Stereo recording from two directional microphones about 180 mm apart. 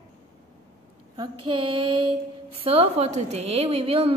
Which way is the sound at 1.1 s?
25° right (ahead or behind).